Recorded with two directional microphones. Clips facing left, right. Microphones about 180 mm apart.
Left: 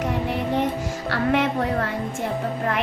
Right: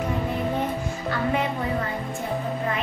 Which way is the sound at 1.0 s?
80° left.